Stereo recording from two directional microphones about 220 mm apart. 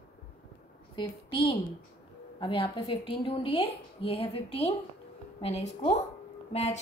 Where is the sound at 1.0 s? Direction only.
25° left (ahead or behind).